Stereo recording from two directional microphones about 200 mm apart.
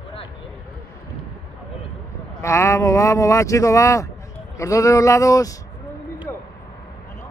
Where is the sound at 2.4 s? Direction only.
15° left (ahead or behind).